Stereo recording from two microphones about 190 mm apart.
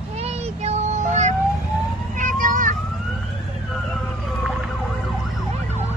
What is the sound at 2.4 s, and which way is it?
Vehicle, 45° right (ahead or behind).